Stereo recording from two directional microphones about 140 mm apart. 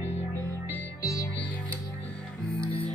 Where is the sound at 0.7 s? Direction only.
25° left (ahead or behind).